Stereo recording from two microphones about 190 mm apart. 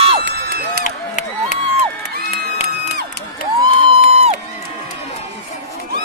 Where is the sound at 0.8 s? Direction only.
40° left (ahead or behind).